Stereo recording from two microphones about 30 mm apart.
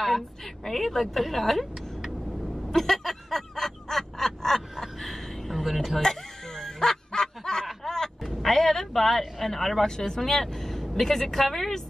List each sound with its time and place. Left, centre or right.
0.7 s speech: centre
2.7 s a sound: centre
5.9 s music: centre
7.1 s snicker: left
7.8 s a sound: centre
8.2 s speech: centre
9.8 s a woman's voice: centre